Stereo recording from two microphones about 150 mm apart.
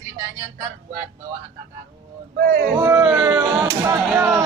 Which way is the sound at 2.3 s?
90° right.